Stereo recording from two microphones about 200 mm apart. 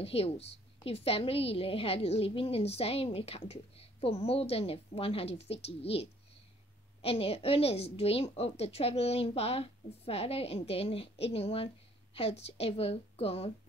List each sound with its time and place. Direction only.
0.0 s a woman's voice: 30° left (ahead or behind)